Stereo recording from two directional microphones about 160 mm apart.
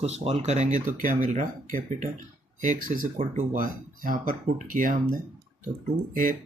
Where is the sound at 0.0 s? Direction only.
40° right (ahead or behind); by 4.9 s 60° right (ahead or behind).